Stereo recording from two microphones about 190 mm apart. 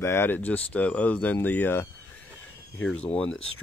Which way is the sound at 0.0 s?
10° left (ahead or behind).